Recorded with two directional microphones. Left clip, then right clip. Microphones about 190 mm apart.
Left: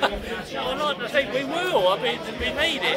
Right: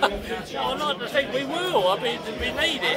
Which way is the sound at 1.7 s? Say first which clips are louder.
Left 1 dB; 25° right (ahead or behind).